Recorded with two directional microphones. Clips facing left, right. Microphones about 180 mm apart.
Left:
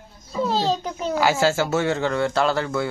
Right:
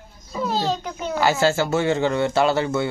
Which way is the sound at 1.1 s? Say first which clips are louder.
Right 1 dB; 5° left (ahead or behind).